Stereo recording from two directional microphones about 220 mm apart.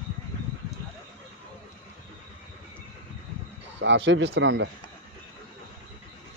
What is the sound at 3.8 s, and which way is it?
Speech, 55° right (ahead or behind).